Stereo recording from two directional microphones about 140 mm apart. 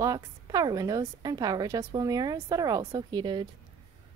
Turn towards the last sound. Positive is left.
turn(degrees=-35)  # may be behind; listen again after turning